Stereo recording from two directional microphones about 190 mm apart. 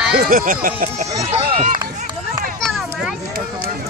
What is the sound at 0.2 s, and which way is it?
Speech, 50° right (ahead or behind).